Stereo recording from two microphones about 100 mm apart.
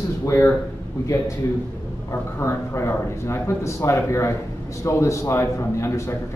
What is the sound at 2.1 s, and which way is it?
A man's voice, 30° left (ahead or behind).